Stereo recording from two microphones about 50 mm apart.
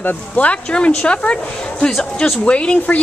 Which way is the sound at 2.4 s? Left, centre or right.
Left.